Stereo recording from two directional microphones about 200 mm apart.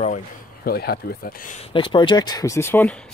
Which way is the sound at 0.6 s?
50° left (ahead or behind).